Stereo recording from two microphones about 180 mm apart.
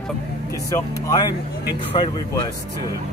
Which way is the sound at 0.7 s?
15° left (ahead or behind).